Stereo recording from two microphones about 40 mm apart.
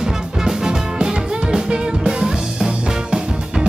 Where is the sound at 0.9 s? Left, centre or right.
Right.